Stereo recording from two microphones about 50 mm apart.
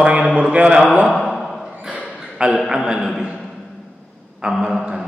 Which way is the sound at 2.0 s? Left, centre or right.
Centre.